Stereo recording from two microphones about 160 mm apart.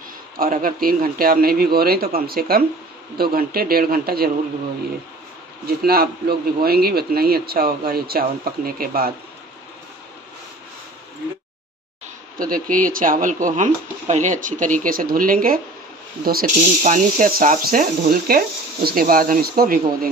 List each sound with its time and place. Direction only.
0.4 s a man's voice: 60° right (ahead or behind)
5.7 s a man's voice: 75° right (ahead or behind)
12.4 s speech: 60° right (ahead or behind)